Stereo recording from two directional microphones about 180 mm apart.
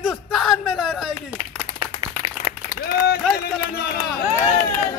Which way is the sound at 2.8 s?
60° left (ahead or behind).